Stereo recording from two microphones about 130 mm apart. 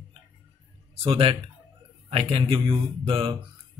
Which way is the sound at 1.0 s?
45° right (ahead or behind).